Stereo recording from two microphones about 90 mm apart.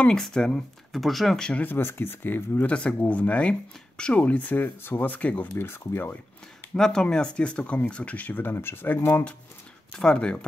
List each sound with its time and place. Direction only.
0.0 s speech: 5° left (ahead or behind); by 6.1 s 25° left (ahead or behind)
6.7 s speech: 5° left (ahead or behind)
9.9 s speech: 10° left (ahead or behind)